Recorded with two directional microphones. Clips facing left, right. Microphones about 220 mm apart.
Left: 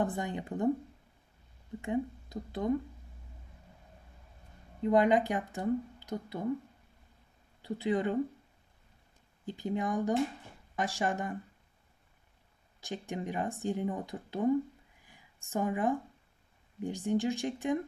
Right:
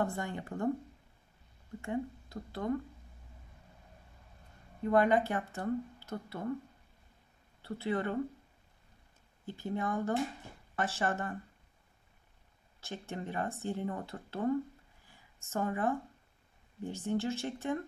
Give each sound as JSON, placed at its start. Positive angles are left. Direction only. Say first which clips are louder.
{"t": 0.0, "sound": "speech", "louder": "left 2 dB", "side_deg": 20}
{"t": 1.8, "sound": "speech", "louder": "left 3 dB", "side_deg": 20}
{"t": 4.8, "sound": "speech", "louder": "left 2 dB", "side_deg": 15}
{"t": 7.6, "sound": "speech", "louder": "left 3 dB", "side_deg": 15}
{"t": 9.5, "sound": "speech", "louder": "left 2 dB", "side_deg": 15}
{"t": 12.8, "sound": "speech", "louder": "left 3 dB", "side_deg": 15}